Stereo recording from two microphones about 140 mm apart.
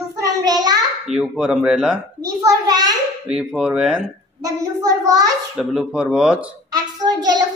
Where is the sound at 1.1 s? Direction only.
5° right (ahead or behind).